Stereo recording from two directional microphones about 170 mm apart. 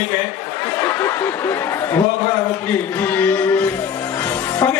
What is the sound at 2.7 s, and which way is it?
Music, 10° left (ahead or behind).